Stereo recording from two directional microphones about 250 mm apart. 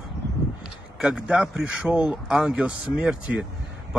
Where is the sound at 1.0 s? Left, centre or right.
Centre.